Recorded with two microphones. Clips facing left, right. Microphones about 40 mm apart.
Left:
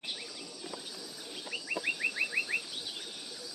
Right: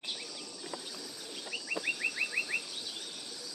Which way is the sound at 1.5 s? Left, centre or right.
Centre.